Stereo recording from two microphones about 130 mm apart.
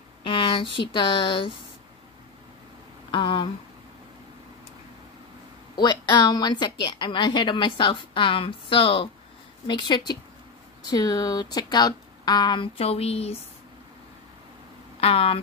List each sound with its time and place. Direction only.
0.2 s a woman's voice: 45° left (ahead or behind)
3.1 s speech: 40° left (ahead or behind)
5.8 s a woman's voice: 35° left (ahead or behind); by 13.4 s 50° left (ahead or behind)
15.0 s speech: 50° left (ahead or behind)